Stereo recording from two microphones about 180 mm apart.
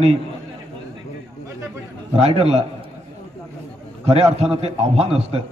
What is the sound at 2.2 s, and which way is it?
Speech, 35° right (ahead or behind).